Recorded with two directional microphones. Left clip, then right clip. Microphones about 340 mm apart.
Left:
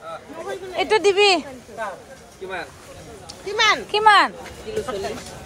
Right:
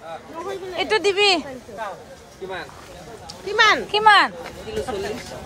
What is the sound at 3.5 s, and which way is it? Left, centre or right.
Speech, right.